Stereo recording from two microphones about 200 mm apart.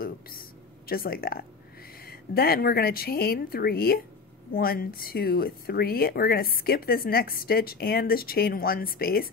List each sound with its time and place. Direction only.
0.8 s speech: 50° left (ahead or behind)